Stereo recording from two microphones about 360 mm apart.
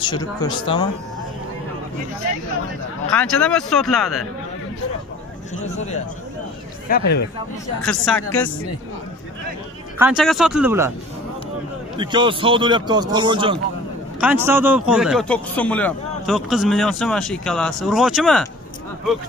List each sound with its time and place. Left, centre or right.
0.0 s speech: centre
3.1 s a man's voice: centre
6.9 s speech: left
7.8 s a man's voice: centre
9.9 s a man's voice: centre
12.0 s a man's voice: centre